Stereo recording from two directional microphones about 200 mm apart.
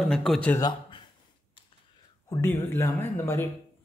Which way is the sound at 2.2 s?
10° left (ahead or behind).